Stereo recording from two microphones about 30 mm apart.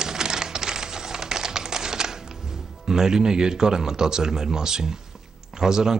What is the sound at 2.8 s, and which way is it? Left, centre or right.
Speech, centre.